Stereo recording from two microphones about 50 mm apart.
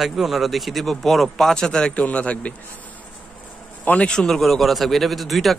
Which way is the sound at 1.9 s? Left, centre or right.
Left.